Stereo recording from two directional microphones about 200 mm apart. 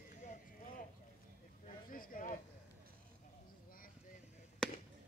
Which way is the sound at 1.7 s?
45° left (ahead or behind).